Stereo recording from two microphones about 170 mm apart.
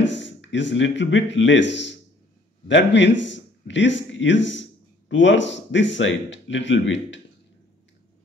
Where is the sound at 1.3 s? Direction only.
90° left.